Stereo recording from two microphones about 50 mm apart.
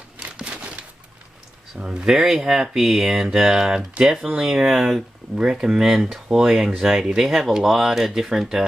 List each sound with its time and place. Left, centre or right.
0.2 s a sound: right
1.8 s speech: right
2.0 s speech: centre
5.3 s speech: centre